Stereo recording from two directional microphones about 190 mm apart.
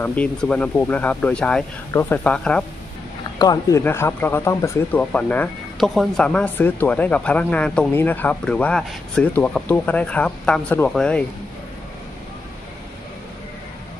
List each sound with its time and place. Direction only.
0.0 s speech: 10° left (ahead or behind)
3.3 s speech: 20° left (ahead or behind)